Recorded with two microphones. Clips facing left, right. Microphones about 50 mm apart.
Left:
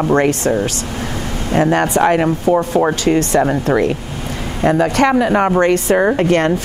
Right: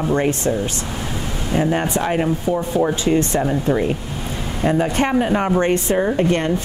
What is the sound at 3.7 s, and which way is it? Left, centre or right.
Speech, left.